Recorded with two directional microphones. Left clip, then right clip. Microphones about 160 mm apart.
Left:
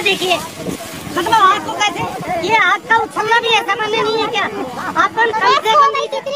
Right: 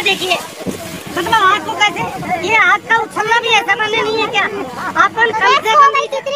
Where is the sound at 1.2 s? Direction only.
60° left (ahead or behind).